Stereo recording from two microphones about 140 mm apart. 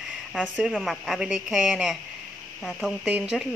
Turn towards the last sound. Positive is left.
turn(degrees=-10)  # may be behind; listen again after turning